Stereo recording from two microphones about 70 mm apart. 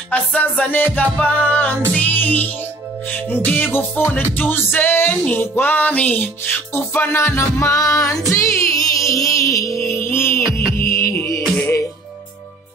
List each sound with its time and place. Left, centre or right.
0.4 s music: left